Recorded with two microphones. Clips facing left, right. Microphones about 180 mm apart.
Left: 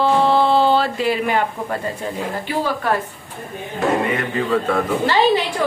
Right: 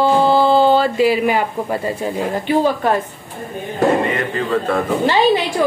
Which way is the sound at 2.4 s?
20° right (ahead or behind).